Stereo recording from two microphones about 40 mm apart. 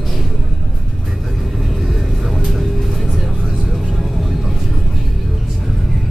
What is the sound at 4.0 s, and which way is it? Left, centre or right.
Vehicle, centre.